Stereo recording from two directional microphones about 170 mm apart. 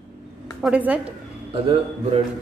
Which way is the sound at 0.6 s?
10° right (ahead or behind).